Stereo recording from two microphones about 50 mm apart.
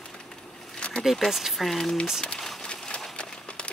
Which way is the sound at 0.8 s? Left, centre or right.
Left.